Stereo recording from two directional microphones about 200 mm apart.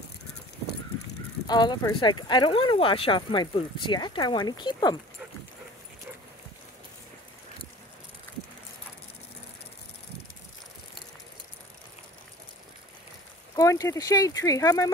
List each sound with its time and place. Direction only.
1.5 s speech: 20° left (ahead or behind)
13.6 s speech: 15° left (ahead or behind)